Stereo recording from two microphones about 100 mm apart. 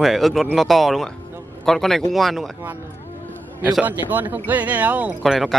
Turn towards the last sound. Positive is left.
turn(degrees=0)  # may be behind; listen again after turning